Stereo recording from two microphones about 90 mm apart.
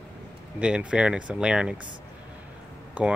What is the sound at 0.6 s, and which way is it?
Speech, 10° right (ahead or behind).